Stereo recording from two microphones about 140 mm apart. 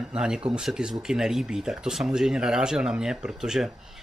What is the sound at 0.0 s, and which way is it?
Speech, 5° right (ahead or behind).